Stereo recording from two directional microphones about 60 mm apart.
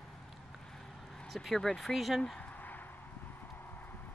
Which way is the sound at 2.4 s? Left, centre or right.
Left.